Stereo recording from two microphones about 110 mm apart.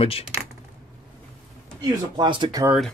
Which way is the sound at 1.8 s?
45° right (ahead or behind).